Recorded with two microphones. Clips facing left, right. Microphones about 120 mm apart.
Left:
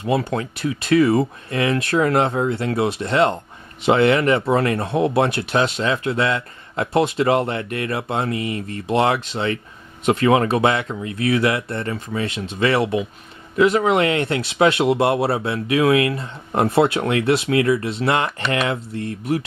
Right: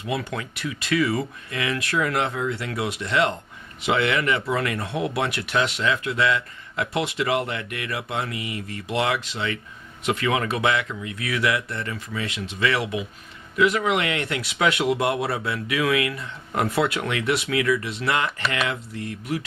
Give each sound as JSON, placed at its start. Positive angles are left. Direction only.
{"t": 0.2, "sound": "speech", "side_deg": 30}